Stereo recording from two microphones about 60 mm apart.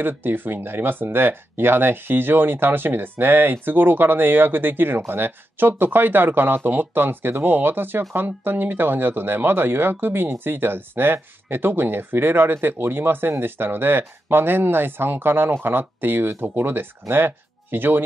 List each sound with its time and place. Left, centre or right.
0.0 s speech: right